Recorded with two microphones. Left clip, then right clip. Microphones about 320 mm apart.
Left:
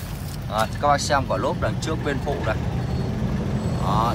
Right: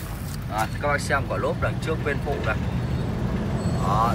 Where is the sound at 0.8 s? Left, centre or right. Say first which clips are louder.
Left 5 dB; centre.